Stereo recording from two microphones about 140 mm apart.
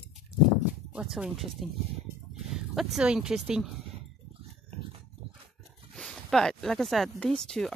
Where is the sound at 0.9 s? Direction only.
10° right (ahead or behind).